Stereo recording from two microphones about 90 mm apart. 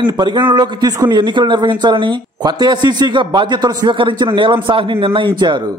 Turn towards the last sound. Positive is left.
turn(degrees=-60)  # may be behind; listen again after turning